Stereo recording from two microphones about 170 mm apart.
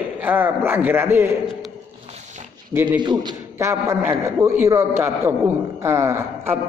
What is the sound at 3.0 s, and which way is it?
A man's voice, 25° right (ahead or behind).